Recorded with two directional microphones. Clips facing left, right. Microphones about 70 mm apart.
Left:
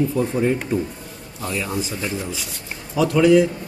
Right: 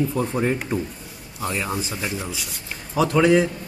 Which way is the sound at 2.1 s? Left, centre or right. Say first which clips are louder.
Left 2 dB; centre.